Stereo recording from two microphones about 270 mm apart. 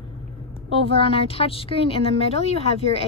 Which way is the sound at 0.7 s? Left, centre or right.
Left.